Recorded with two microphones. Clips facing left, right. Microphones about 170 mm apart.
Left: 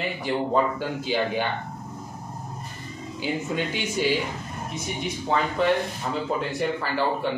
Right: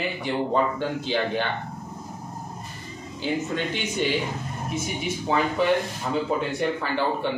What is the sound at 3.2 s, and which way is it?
Speech, 5° left (ahead or behind).